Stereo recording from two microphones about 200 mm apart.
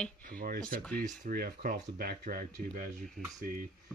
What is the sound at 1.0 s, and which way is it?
Speech, 45° right (ahead or behind).